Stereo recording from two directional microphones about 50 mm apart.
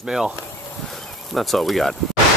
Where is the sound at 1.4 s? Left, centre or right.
Centre.